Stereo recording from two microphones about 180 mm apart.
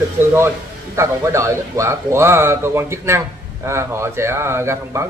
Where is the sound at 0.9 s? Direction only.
15° right (ahead or behind).